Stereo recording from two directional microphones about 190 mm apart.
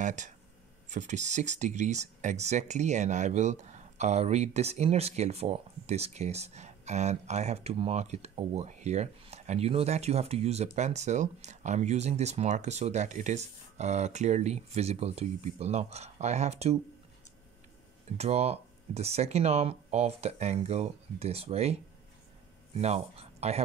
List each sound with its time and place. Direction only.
0.0 s speech: 40° right (ahead or behind)
18.1 s speech: 35° right (ahead or behind)
22.8 s speech: 35° right (ahead or behind)